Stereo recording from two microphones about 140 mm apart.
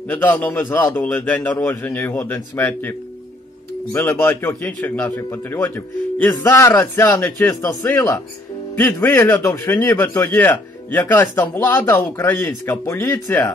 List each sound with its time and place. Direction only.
0.1 s a man's voice: 10° left (ahead or behind)